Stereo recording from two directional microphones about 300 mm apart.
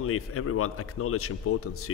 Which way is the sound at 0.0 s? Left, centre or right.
Left.